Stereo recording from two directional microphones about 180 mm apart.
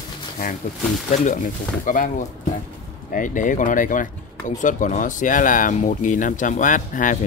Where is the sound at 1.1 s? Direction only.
45° left (ahead or behind).